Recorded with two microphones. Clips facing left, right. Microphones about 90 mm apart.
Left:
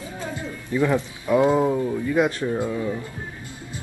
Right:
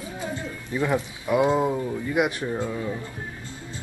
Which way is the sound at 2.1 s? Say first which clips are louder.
Left 2 dB; 15° right (ahead or behind).